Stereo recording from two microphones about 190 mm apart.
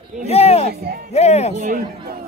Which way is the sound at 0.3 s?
30° left (ahead or behind).